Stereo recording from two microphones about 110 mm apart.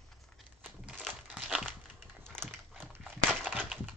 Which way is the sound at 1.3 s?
5° right (ahead or behind).